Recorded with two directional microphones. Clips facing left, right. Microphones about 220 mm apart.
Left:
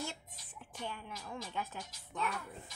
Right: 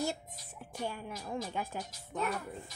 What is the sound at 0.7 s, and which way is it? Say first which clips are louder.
Speech: right 5 dB; 45° right (ahead or behind).